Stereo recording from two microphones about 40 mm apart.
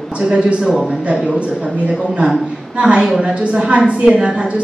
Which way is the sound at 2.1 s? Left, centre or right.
Right.